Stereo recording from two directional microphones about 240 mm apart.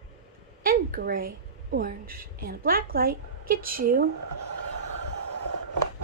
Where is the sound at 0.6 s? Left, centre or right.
Right.